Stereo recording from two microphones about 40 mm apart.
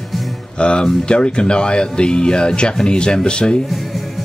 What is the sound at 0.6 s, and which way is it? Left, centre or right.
Speech, left.